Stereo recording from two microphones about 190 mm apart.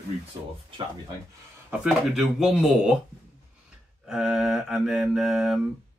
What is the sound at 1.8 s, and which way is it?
Speech, centre (ahead or behind).